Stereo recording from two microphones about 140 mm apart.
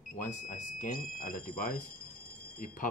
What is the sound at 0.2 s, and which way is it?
Speech, 60° left (ahead or behind).